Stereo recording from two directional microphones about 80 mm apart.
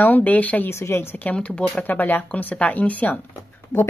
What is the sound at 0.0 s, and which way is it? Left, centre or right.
Speech, left.